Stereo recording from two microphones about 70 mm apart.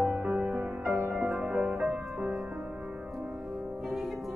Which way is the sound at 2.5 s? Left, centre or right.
Centre.